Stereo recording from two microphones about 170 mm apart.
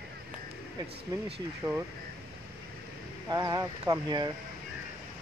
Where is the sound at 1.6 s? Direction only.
15° right (ahead or behind).